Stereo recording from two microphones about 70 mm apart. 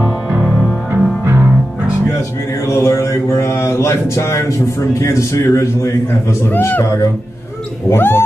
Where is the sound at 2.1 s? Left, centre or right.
Left.